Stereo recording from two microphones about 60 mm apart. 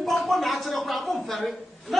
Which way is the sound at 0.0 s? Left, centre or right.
Centre.